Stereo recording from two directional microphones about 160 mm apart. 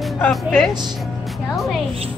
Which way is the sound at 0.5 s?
Centre (ahead or behind).